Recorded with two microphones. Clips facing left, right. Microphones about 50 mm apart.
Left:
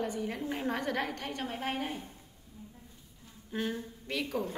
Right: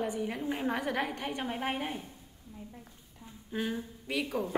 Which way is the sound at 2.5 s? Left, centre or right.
Right.